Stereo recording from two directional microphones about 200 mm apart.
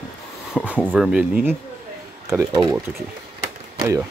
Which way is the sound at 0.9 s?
5° right (ahead or behind).